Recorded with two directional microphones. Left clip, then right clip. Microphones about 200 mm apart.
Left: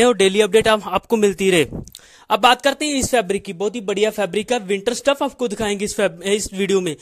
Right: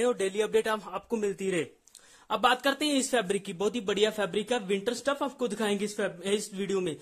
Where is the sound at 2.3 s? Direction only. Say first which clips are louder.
Left 11 dB; 35° left (ahead or behind).